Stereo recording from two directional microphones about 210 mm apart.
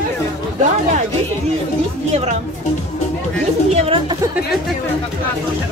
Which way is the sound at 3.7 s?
30° right (ahead or behind).